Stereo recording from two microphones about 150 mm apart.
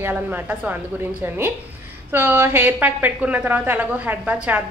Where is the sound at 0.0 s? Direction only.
10° right (ahead or behind).